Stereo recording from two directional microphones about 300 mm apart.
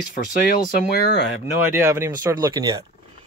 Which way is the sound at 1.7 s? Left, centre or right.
Centre.